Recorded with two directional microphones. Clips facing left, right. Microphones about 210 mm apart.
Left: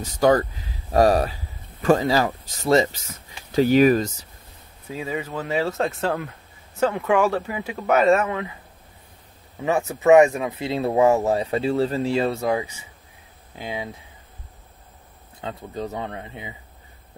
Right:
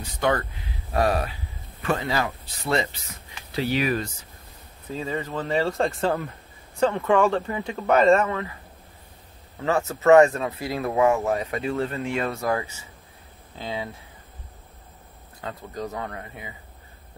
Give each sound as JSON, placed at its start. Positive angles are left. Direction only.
{"t": 0.0, "sound": "speech", "side_deg": 35}
{"t": 4.8, "sound": "speech", "side_deg": 10}
{"t": 9.6, "sound": "speech", "side_deg": 15}
{"t": 10.7, "sound": "speech", "side_deg": 25}
{"t": 12.4, "sound": "speech", "side_deg": 15}
{"t": 15.4, "sound": "speech", "side_deg": 25}